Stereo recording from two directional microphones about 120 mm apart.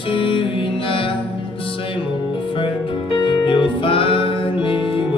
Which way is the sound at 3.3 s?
45° left (ahead or behind).